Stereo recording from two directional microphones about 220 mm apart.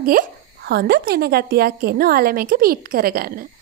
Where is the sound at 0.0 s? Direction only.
40° right (ahead or behind).